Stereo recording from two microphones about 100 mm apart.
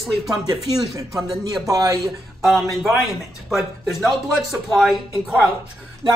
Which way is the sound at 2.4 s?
Centre (ahead or behind).